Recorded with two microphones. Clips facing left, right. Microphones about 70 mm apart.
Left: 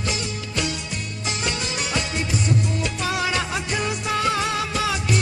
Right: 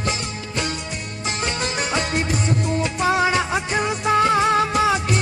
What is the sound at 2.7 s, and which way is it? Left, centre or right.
Music, right.